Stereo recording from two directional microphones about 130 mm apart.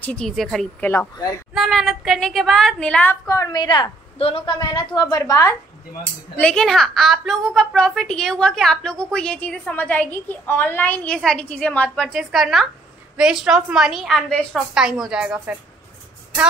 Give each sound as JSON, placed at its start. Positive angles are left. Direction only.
{"t": 0.0, "sound": "a child's voice", "side_deg": 5}
{"t": 3.1, "sound": "a woman's voice", "side_deg": 25}
{"t": 6.3, "sound": "a child's voice", "side_deg": 5}